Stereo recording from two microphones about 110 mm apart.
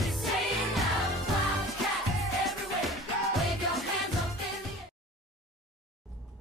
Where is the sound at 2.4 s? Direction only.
Centre (ahead or behind).